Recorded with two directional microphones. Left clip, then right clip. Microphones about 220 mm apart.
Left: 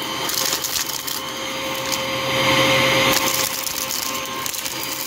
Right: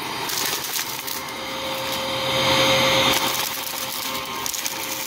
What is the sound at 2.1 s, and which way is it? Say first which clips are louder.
Vacuum cleaner: left 1 dB; 20° left (ahead or behind).